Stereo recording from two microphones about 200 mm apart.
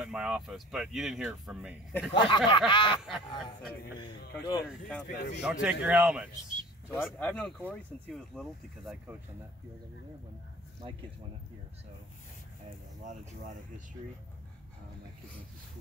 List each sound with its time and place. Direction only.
0.0 s speech: 5° right (ahead or behind)
2.1 s speech: 25° left (ahead or behind)
4.6 s speech: 5° left (ahead or behind)
5.0 s speech: 50° left (ahead or behind)
5.4 s speech: 5° right (ahead or behind)
7.2 s speech: 5° left (ahead or behind)
13.0 s speech: 40° right (ahead or behind)